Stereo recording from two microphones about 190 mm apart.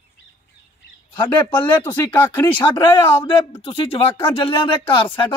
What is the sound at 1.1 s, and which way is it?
Speech, 25° left (ahead or behind).